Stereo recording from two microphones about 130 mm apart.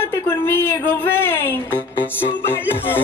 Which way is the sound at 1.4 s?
15° left (ahead or behind).